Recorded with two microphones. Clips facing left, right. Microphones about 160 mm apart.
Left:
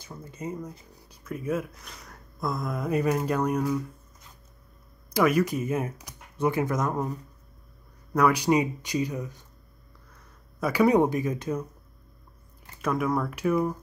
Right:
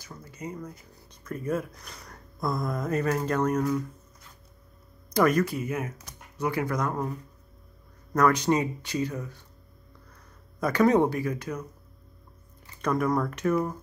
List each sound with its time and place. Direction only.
0.0 s speech: 25° left (ahead or behind)
1.2 s speech: 5° left (ahead or behind)
5.1 s speech: 5° left (ahead or behind)
5.4 s speech: 20° left (ahead or behind)
8.1 s speech: 10° left (ahead or behind)
10.6 s speech: 10° left (ahead or behind)
12.8 s speech: 5° left (ahead or behind)